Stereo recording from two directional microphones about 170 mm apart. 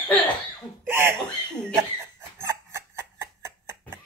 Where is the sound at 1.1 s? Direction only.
5° left (ahead or behind).